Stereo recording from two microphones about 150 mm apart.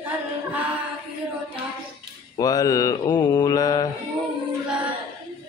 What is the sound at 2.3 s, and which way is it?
Mantra, 25° left (ahead or behind).